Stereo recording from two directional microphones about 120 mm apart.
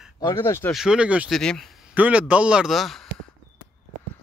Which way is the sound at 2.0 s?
10° right (ahead or behind).